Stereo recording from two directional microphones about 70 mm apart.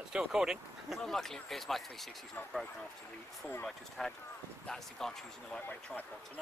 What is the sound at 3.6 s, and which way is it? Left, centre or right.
Speech, centre.